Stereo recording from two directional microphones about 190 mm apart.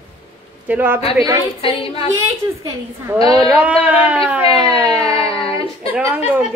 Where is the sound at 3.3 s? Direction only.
5° right (ahead or behind).